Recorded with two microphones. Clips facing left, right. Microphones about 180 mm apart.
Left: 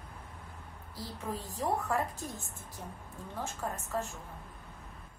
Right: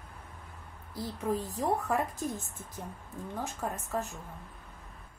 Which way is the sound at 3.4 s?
20° right (ahead or behind).